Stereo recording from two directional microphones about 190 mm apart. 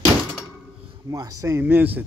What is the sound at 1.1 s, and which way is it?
Speech, 15° right (ahead or behind).